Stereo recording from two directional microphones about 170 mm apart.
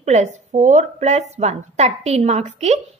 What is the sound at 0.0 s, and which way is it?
A woman's voice, 40° right (ahead or behind).